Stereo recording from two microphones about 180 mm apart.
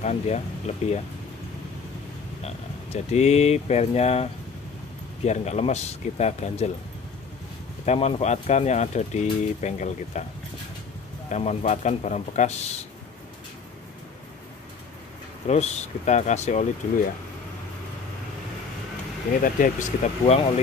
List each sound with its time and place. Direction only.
0.0 s speech: 35° left (ahead or behind)
2.4 s speech: 35° left (ahead or behind)
7.8 s speech: 35° left (ahead or behind)
11.2 s speech: 40° left (ahead or behind)
15.4 s speech: 35° left (ahead or behind)
19.4 s speech: 45° left (ahead or behind)